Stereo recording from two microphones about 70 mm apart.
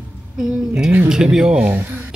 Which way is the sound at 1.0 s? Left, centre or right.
Centre.